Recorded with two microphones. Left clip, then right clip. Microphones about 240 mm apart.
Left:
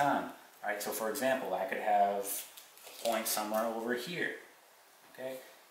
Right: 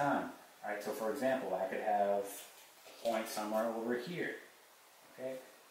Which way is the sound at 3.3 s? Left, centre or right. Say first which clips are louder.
Left 3 dB; centre.